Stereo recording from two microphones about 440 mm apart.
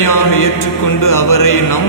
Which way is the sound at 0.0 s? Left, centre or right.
Left.